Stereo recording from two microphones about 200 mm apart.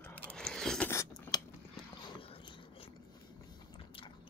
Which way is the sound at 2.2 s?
25° left (ahead or behind).